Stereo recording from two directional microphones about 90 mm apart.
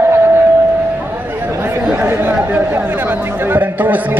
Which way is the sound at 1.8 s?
15° right (ahead or behind).